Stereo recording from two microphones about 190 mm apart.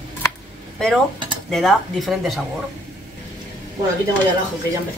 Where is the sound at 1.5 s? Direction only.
Centre (ahead or behind).